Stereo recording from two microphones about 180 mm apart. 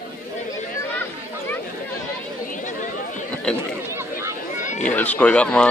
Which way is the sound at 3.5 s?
5° left (ahead or behind).